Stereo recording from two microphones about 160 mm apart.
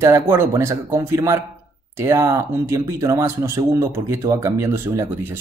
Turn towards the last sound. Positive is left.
turn(degrees=-15)  # may be behind; listen again after turning